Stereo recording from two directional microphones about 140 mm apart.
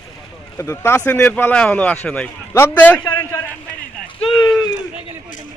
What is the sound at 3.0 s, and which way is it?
Speech, 35° left (ahead or behind).